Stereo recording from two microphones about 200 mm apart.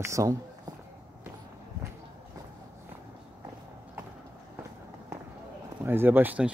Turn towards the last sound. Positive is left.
turn(degrees=-5)  # may be behind; listen again after turning